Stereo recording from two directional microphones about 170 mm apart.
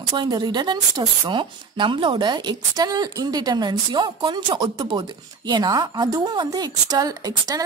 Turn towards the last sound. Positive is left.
turn(degrees=-20)  # may be behind; listen again after turning